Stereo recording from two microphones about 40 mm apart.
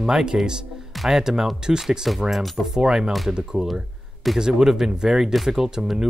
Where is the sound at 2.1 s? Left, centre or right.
Centre.